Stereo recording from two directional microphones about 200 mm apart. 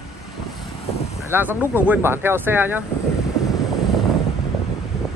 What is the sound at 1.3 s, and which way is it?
Speech, 10° right (ahead or behind).